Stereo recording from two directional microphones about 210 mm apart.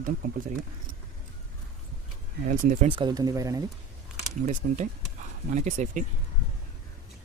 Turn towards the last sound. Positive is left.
turn(degrees=-35)  # may be behind; listen again after turning